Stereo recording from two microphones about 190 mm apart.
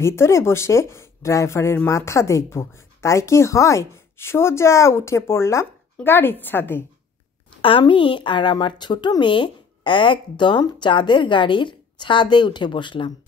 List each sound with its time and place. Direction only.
0.0 s speech: 15° left (ahead or behind)
7.6 s speech: 25° left (ahead or behind)